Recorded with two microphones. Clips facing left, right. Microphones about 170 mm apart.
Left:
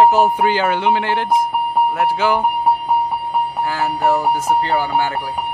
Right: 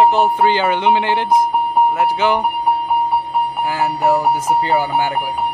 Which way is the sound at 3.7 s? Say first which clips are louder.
Right 2 dB; 15° right (ahead or behind).